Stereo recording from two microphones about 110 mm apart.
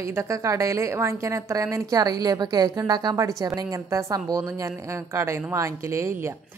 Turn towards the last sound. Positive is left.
turn(degrees=-25)  # may be behind; listen again after turning